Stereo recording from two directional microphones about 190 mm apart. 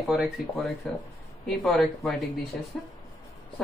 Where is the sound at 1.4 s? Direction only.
Centre (ahead or behind).